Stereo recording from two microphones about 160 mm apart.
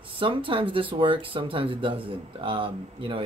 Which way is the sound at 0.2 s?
35° right (ahead or behind).